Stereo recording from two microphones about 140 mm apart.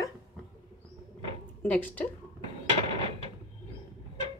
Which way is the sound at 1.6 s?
10° left (ahead or behind).